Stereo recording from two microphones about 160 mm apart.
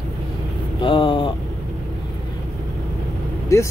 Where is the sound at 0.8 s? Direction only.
30° left (ahead or behind).